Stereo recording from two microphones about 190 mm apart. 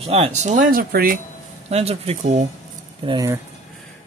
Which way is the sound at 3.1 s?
20° right (ahead or behind).